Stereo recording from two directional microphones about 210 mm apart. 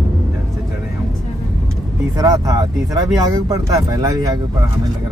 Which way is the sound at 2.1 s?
15° right (ahead or behind).